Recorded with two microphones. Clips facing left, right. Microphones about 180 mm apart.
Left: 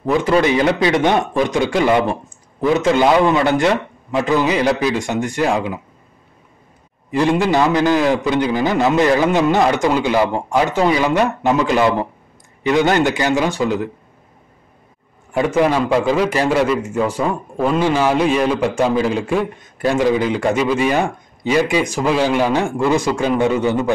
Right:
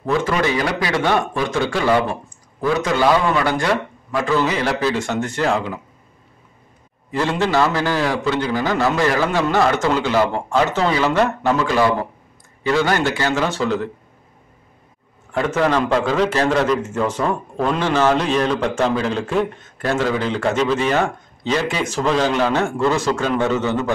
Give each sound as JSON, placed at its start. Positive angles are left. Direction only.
{"t": 0.0, "sound": "a man's voice", "side_deg": 15}
{"t": 7.1, "sound": "a man's voice", "side_deg": 15}
{"t": 15.3, "sound": "a man's voice", "side_deg": 15}